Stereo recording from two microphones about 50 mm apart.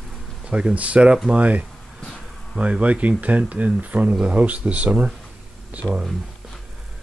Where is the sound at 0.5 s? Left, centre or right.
Right.